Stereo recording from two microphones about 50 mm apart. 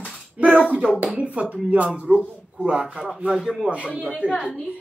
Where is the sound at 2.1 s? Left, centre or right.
Right.